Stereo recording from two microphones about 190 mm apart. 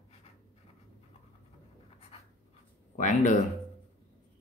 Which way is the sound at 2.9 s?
40° left (ahead or behind).